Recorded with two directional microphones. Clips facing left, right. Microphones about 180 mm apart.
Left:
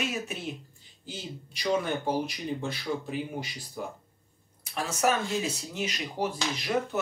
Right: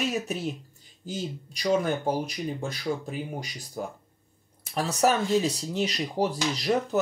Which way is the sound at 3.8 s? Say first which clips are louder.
Right 3 dB; 40° right (ahead or behind).